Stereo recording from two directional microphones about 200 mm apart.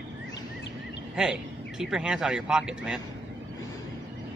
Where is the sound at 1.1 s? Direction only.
5° right (ahead or behind).